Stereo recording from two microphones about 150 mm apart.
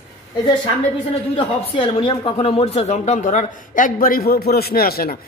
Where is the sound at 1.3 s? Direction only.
40° left (ahead or behind); by 5.1 s 90° left.